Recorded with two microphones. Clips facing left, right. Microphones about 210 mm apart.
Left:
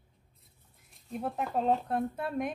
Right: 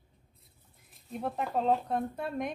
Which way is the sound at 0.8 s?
Centre (ahead or behind).